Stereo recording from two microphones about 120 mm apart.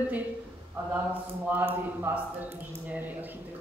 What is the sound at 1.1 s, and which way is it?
Speech, 15° right (ahead or behind).